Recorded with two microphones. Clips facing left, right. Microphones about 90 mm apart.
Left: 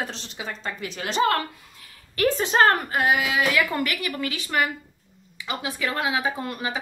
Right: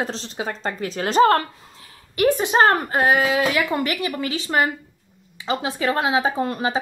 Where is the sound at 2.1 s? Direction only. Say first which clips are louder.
Right 3 dB; 15° right (ahead or behind); by 3.4 s 35° right (ahead or behind).